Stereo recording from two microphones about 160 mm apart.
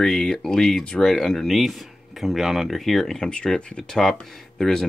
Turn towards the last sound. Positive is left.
turn(degrees=5)  # may be behind; listen again after turning